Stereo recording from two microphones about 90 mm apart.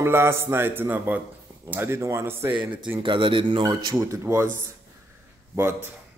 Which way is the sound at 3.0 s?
70° right (ahead or behind).